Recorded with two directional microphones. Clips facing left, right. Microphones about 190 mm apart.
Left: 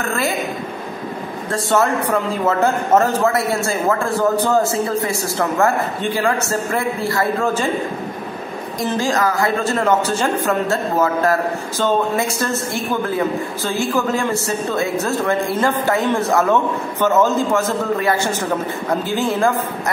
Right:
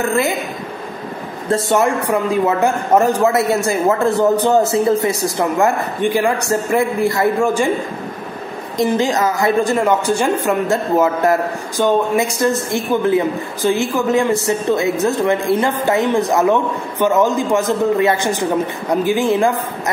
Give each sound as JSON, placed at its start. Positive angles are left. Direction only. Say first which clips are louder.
{"t": 1.5, "sound": "a man's voice", "louder": "right 2 dB", "side_deg": -15}
{"t": 8.7, "sound": "a man's voice", "louder": "right 4 dB", "side_deg": -20}